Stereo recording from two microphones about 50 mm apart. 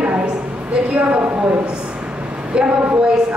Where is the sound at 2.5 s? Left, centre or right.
Right.